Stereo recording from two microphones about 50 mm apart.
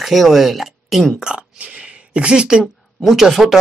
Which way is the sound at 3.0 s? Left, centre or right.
Centre.